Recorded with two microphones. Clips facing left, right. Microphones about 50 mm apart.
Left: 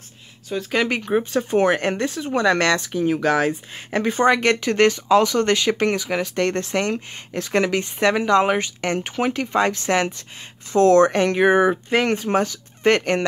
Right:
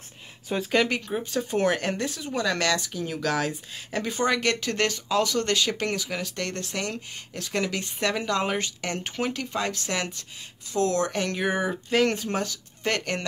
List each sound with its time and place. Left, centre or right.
0.5 s speech: centre
0.8 s speech: left
10.7 s speech: left